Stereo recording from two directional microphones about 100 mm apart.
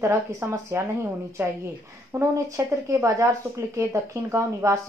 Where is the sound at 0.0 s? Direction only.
25° right (ahead or behind).